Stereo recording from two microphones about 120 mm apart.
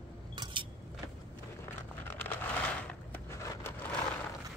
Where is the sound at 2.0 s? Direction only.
15° left (ahead or behind).